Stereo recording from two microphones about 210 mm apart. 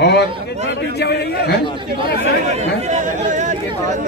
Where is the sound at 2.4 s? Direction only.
35° right (ahead or behind).